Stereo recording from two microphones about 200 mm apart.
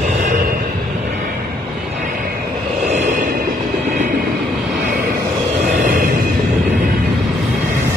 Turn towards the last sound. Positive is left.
turn(degrees=-40)  # may be behind; listen again after turning